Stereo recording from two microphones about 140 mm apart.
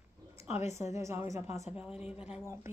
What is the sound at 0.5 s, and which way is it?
Speech, 55° left (ahead or behind).